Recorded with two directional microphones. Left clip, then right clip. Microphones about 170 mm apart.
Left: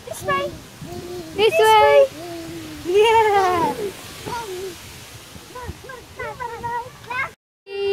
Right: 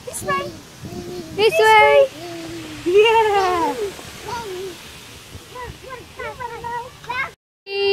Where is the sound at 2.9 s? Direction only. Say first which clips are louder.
Right 1 dB; 40° left (ahead or behind).